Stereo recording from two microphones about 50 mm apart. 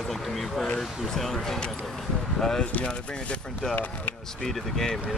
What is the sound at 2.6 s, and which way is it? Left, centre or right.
Speech, left.